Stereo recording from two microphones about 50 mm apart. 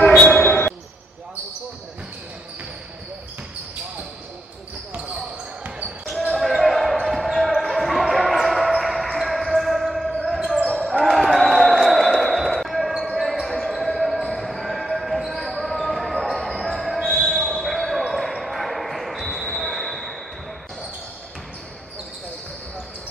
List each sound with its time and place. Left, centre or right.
0.3 s basketball bounce: left
6.4 s basketball bounce: centre
11.3 s music: centre
12.5 s basketball bounce: centre